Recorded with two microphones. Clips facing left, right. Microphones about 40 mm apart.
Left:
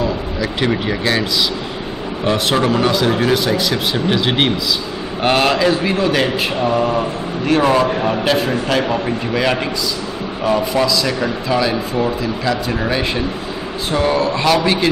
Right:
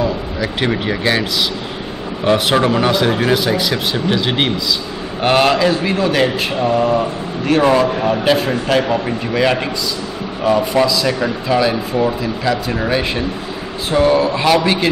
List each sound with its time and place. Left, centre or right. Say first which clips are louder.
0.4 s speech: even; centre
2.2 s speech: right 2 dB; centre
3.9 s speech: even; centre